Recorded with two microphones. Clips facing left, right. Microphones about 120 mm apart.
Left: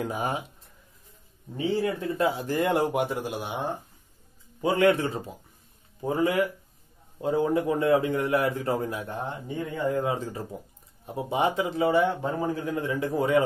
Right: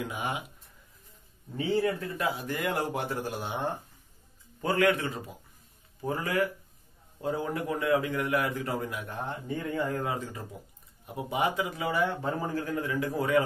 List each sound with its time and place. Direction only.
0.0 s speech: 40° left (ahead or behind)
1.6 s a man's voice: 20° left (ahead or behind)
3.0 s a man's voice: 15° left (ahead or behind)
4.8 s a man's voice: 30° left (ahead or behind)
10.1 s a man's voice: 30° left (ahead or behind)